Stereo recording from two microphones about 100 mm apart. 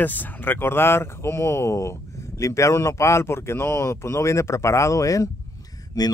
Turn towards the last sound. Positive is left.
turn(degrees=40)  # may be behind; listen again after turning